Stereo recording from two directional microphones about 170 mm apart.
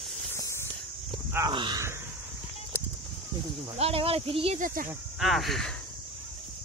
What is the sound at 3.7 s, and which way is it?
Speech, 35° right (ahead or behind).